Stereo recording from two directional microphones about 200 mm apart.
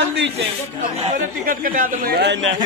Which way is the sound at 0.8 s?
40° right (ahead or behind).